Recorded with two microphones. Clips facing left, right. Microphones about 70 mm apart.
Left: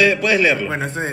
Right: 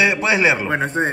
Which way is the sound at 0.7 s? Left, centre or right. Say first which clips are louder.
Right 4 dB; right.